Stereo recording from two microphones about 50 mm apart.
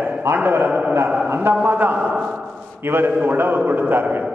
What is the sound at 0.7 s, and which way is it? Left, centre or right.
Speech, right.